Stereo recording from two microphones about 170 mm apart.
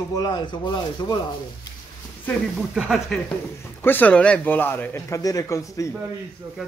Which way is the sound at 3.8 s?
10° left (ahead or behind).